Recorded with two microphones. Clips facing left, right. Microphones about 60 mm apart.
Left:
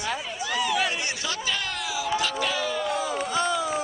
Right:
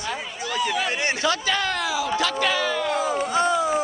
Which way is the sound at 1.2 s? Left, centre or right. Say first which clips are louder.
Right 7 dB; right.